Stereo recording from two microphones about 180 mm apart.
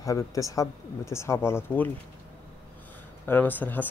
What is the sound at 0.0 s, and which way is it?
Speech, 20° left (ahead or behind).